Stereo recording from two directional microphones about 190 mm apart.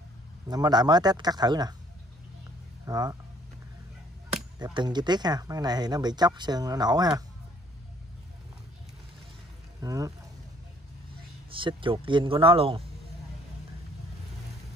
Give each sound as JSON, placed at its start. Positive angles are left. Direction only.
{"t": 0.5, "sound": "speech", "side_deg": -20}
{"t": 2.8, "sound": "speech", "side_deg": -20}
{"t": 4.7, "sound": "speech", "side_deg": -20}
{"t": 9.8, "sound": "speech", "side_deg": -20}
{"t": 11.5, "sound": "speech", "side_deg": -25}